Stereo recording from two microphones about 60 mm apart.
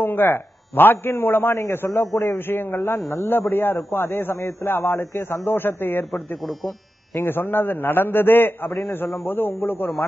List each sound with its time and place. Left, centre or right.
0.0 s a man's voice: left